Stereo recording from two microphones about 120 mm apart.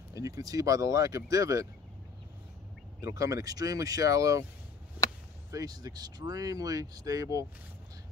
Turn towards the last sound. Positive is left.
turn(degrees=-30)  # may be behind; listen again after turning